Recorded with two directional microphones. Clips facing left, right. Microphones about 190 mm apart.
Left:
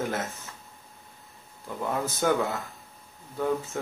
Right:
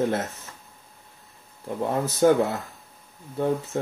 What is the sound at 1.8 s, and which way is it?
Speech, 30° right (ahead or behind).